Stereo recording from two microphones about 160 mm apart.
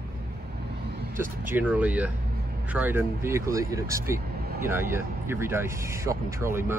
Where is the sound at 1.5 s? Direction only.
10° right (ahead or behind).